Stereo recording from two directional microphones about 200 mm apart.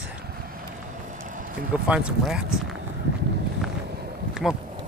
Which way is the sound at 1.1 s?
40° right (ahead or behind).